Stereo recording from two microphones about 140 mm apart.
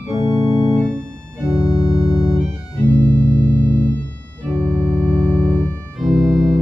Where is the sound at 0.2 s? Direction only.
40° left (ahead or behind).